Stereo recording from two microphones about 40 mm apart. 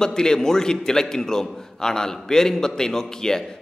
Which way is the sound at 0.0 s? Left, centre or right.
Centre.